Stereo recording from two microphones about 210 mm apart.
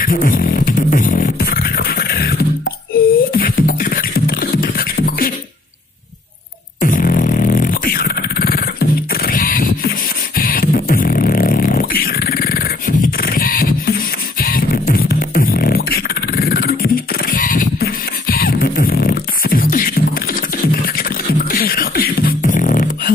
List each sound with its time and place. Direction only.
0.0 s beatboxing: 40° left (ahead or behind)
6.8 s beatboxing: 40° left (ahead or behind)
21.0 s beatboxing: 45° left (ahead or behind)